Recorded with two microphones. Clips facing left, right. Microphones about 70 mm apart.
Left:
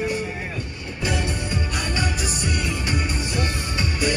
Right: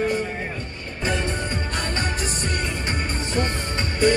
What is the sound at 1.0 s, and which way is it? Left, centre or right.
Music, right.